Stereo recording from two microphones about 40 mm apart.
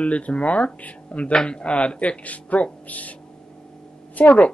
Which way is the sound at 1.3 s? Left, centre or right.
Left.